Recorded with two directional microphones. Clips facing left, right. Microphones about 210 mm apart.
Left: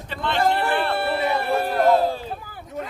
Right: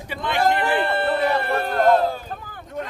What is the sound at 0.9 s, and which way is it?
Speech, 5° left (ahead or behind).